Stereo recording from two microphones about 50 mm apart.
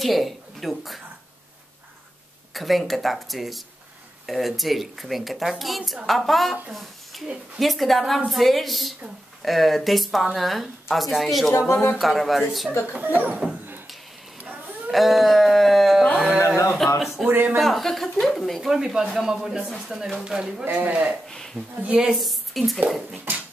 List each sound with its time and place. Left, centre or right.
0.0 s speech: centre
2.5 s speech: centre
11.7 s speech: left
12.0 s speech: centre
13.0 s speech: right
14.9 s a sound: centre
16.3 s a sound: left
17.3 s speech: right
17.6 s speech: centre
18.7 s a man's voice: centre
22.1 s a woman's voice: centre